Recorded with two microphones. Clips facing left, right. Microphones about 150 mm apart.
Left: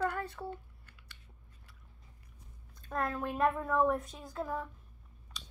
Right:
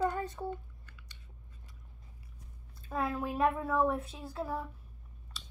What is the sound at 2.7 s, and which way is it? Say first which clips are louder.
A woman's voice: right 1 dB; 5° right (ahead or behind).